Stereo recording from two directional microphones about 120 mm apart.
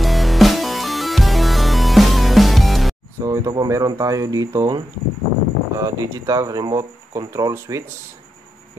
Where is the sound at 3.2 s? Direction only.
25° right (ahead or behind).